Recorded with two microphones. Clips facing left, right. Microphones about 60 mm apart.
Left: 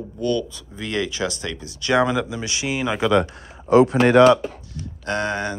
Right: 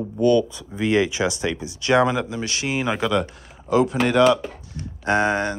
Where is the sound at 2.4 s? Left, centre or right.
Centre.